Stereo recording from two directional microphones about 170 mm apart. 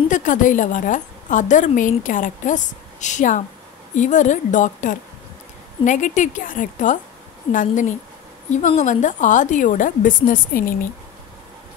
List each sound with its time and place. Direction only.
0.1 s a woman's voice: 50° left (ahead or behind)